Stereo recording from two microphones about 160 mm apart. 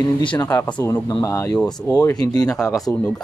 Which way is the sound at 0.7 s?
10° left (ahead or behind).